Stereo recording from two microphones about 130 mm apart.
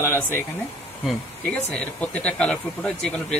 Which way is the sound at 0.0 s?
15° left (ahead or behind).